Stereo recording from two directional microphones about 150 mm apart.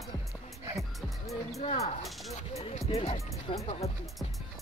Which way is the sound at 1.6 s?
45° left (ahead or behind).